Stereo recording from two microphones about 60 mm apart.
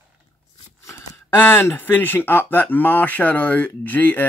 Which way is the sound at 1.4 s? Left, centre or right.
Left.